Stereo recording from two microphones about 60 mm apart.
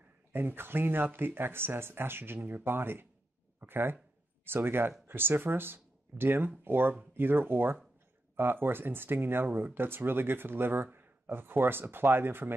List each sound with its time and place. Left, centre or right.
0.3 s speech: right